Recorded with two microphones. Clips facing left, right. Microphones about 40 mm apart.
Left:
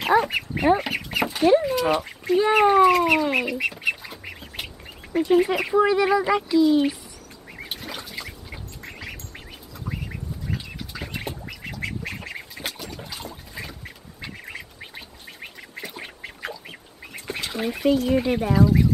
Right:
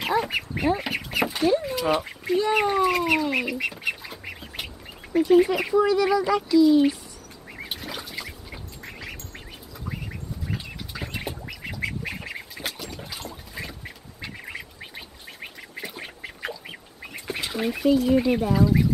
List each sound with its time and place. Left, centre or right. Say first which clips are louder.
0.2 s a sound: left 2 dB; centre
0.7 s chicken: left 1 dB; centre
1.6 s duck: left 2 dB; centre
2.6 s duck: left 6 dB; centre
5.1 s speech: right 1 dB; centre
5.8 s speech: left 2 dB; left
7.5 s duck: even; centre
10.5 s duck: left 1 dB; centre
17.9 s speech: right 1 dB; centre